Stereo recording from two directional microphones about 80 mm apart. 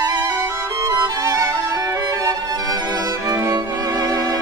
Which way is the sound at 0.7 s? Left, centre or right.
Right.